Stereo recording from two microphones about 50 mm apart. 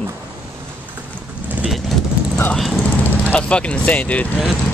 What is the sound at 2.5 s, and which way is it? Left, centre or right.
Speech, centre.